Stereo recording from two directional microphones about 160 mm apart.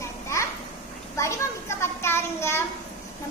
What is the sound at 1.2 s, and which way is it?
A child's voice, 15° left (ahead or behind).